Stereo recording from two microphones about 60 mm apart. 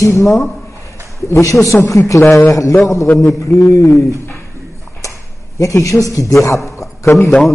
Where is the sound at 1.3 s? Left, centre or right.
Left.